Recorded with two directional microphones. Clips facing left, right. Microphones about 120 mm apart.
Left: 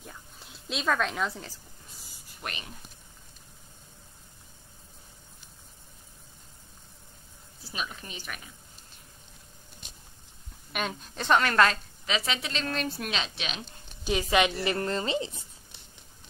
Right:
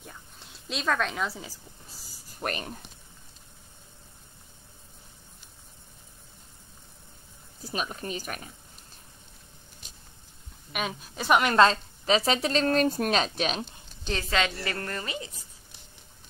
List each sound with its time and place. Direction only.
0.0 s a sound: centre (ahead or behind)
2.0 s a sound: 40° right (ahead or behind)
7.6 s speech: 40° right (ahead or behind)
10.7 s a woman's voice: 5° right (ahead or behind)
11.5 s a woman's voice: 30° right (ahead or behind)
14.0 s a woman's voice: 15° left (ahead or behind)